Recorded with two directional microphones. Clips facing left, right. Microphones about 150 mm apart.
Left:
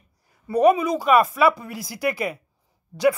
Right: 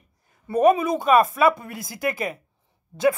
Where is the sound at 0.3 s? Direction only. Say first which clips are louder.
Left 1 dB; 25° right (ahead or behind).